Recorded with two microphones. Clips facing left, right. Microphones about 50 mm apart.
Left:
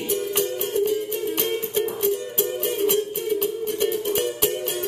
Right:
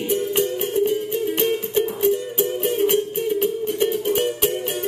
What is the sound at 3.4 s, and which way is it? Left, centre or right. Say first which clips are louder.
Music: right 3 dB; right.